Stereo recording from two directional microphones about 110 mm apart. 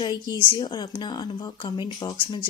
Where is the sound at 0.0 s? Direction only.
45° left (ahead or behind).